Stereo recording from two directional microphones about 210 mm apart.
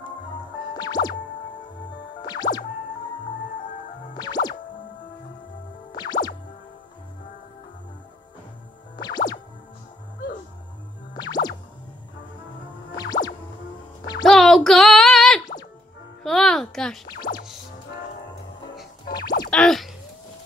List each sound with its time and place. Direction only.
0.7 s music: 20° left (ahead or behind)
2.2 s music: 20° left (ahead or behind)
4.1 s music: 20° left (ahead or behind)
5.9 s music: 20° left (ahead or behind)
8.9 s music: 20° left (ahead or behind)
11.1 s music: 20° left (ahead or behind)
12.9 s music: 20° left (ahead or behind)
14.2 s a sound: centre (ahead or behind)
16.2 s music: centre (ahead or behind)
17.3 s music: 45° left (ahead or behind)
19.5 s boing: 5° left (ahead or behind)